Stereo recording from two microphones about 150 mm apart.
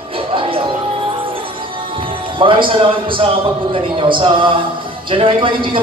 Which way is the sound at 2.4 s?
35° right (ahead or behind).